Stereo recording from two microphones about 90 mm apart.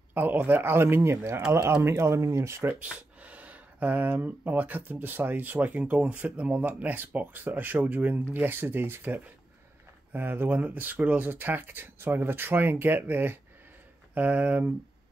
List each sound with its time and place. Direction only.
0.1 s speech: 20° right (ahead or behind)